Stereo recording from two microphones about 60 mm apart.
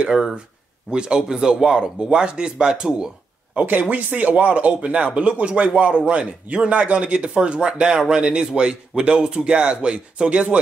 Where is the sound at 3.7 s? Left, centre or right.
Right.